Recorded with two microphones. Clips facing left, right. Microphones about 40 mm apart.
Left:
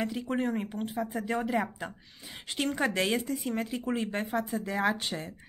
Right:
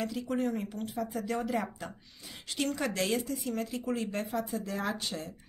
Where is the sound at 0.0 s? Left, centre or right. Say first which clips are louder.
Left 1 dB; left.